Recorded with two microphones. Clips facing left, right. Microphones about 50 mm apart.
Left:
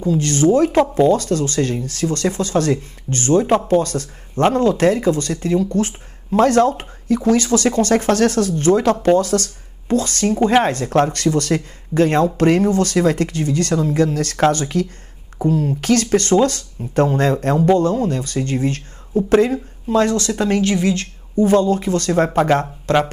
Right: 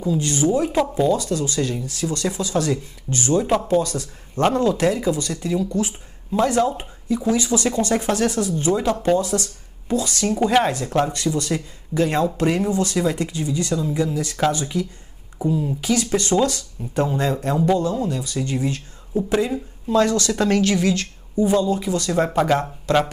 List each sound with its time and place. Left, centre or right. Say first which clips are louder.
0.0 s speech: left 5 dB; left
10.2 s speech: left 3 dB; left
10.6 s speech: left 4 dB; left
21.4 s speech: left 4 dB; left
22.1 s speech: left 3 dB; left
22.9 s speech: left 2 dB; left